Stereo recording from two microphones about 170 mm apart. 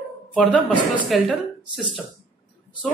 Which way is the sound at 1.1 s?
Centre (ahead or behind).